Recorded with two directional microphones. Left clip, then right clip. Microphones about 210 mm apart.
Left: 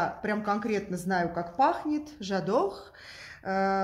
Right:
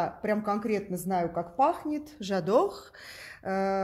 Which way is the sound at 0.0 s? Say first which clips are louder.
Even; 35° right (ahead or behind).